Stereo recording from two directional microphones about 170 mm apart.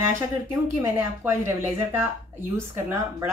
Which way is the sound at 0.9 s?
15° right (ahead or behind).